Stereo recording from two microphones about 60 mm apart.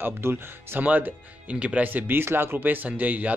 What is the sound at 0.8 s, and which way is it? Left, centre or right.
Speech, right.